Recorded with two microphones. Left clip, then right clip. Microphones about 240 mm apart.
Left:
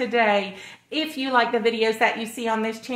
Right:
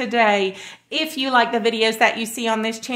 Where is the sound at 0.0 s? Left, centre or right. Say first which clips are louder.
Right 3 dB; right.